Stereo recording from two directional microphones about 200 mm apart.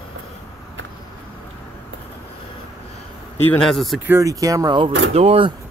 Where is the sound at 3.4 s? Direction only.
5° left (ahead or behind).